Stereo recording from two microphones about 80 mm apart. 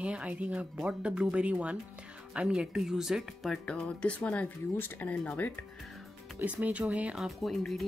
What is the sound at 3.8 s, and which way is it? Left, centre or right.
Speech, centre.